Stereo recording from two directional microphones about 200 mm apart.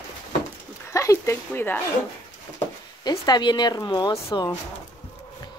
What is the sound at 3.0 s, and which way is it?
A woman's voice, 20° left (ahead or behind).